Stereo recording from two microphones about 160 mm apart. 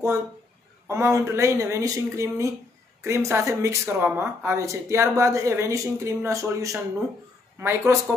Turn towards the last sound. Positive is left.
turn(degrees=-15)  # may be behind; listen again after turning